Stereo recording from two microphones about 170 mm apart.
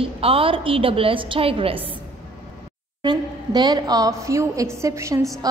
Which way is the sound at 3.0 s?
25° right (ahead or behind).